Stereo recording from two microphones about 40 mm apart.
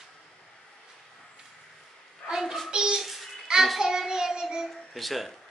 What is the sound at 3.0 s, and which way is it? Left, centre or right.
Babbling, centre.